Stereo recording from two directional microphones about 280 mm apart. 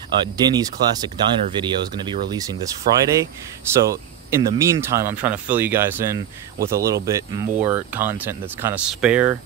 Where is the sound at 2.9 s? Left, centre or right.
Right.